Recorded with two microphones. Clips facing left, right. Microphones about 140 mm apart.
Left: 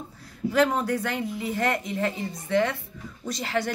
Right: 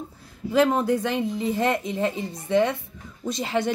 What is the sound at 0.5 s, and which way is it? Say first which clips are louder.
Speech: right 3 dB; 20° right (ahead or behind).